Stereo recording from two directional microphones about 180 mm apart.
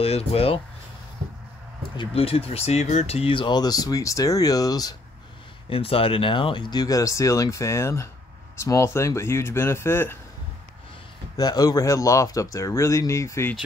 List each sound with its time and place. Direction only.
0.0 s speech: 35° left (ahead or behind)
2.0 s speech: 35° left (ahead or behind)
5.7 s speech: 30° left (ahead or behind); by 10.1 s 15° left (ahead or behind)
11.3 s speech: 20° left (ahead or behind)